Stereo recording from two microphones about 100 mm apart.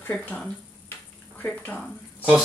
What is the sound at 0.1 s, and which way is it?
Speech, 10° left (ahead or behind).